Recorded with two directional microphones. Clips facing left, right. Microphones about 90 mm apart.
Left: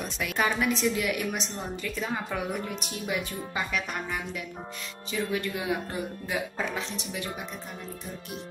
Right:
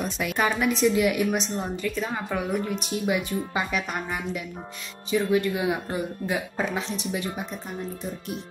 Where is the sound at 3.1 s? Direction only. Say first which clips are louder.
Right 5 dB; 15° right (ahead or behind).